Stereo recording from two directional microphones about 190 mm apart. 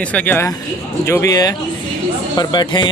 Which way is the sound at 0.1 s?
10° left (ahead or behind).